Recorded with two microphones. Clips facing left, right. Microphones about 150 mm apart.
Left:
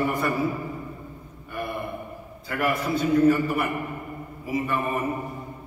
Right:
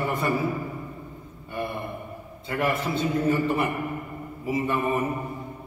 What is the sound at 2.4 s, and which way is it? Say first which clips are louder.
A man's voice: even; 25° right (ahead or behind).